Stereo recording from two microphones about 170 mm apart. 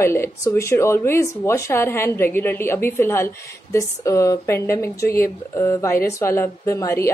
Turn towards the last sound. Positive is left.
turn(degrees=15)  # may be behind; listen again after turning